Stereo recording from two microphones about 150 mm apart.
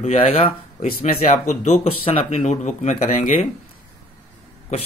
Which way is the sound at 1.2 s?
50° left (ahead or behind).